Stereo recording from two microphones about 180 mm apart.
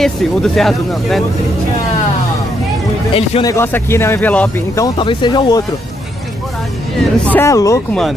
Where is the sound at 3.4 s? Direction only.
15° left (ahead or behind).